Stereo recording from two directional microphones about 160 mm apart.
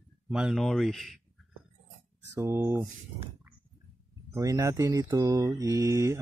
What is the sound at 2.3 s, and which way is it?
Speech, 15° right (ahead or behind).